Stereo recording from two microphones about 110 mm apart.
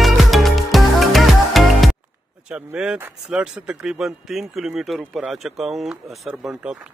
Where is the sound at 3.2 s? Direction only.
10° right (ahead or behind).